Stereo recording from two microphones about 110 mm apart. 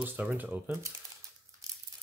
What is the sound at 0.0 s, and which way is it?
Speech, 15° right (ahead or behind).